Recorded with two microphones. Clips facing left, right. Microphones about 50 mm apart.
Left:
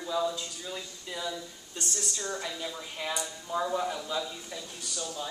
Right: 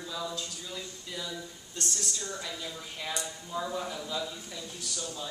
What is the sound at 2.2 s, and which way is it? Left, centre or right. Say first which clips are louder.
A man's voice: left 3 dB; left.